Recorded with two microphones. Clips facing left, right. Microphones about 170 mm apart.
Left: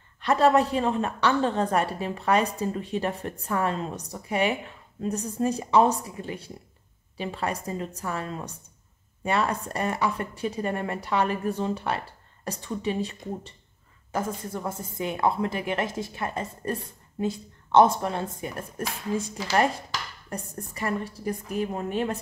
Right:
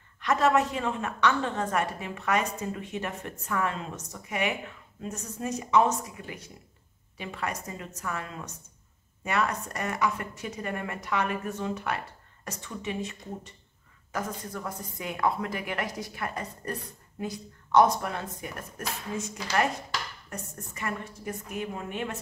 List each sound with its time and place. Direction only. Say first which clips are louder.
0.2 s a woman's voice: left 4 dB; 35° left (ahead or behind)